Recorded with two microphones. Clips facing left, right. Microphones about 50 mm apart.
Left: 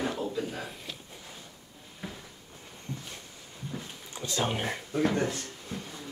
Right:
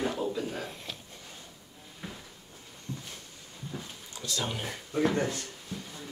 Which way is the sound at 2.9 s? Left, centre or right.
Left.